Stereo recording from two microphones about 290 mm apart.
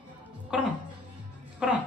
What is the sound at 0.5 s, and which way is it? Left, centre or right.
Speech, centre.